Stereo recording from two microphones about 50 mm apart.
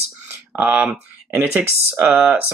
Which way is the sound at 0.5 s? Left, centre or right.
Right.